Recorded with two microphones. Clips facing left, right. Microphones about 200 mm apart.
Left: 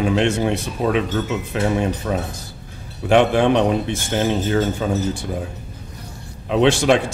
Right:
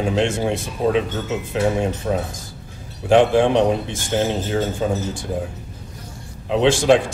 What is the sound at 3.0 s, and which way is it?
Speech, 65° left (ahead or behind).